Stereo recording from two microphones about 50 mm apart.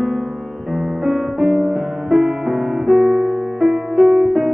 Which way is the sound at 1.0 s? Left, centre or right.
Centre.